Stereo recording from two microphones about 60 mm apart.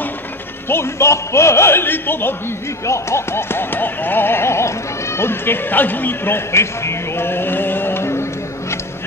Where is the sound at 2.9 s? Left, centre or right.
Left.